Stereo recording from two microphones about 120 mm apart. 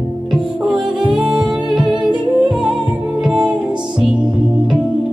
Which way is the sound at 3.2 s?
10° right (ahead or behind).